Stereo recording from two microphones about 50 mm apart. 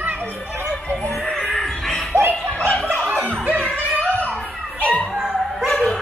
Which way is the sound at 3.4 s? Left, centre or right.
Right.